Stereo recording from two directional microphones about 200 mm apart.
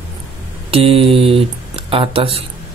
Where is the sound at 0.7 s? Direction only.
30° right (ahead or behind).